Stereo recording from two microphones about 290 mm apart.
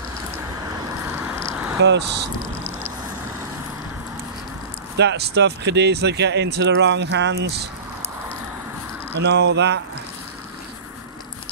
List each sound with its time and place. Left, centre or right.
1.1 s a sound: centre
1.8 s speech: right
4.9 s speech: right
9.2 s speech: right